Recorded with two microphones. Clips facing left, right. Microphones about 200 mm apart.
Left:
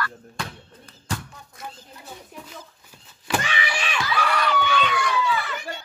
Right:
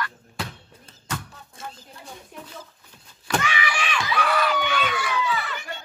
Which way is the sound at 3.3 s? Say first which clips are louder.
Even; 20° left (ahead or behind).